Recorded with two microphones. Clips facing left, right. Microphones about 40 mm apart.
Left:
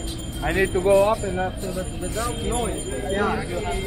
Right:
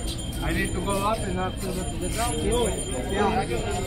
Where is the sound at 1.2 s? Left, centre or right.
Centre.